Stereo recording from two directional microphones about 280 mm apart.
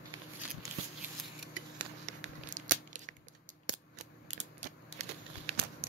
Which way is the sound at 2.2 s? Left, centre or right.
Right.